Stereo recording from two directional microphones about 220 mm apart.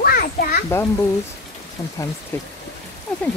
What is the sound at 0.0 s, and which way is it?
Children playing, 40° left (ahead or behind).